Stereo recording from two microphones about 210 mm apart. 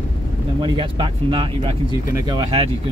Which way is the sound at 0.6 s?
20° right (ahead or behind).